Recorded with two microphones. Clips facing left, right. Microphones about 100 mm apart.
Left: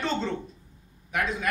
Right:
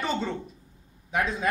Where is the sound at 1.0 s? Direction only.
20° right (ahead or behind).